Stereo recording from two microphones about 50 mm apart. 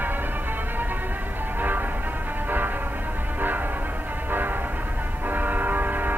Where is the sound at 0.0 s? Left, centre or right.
Right.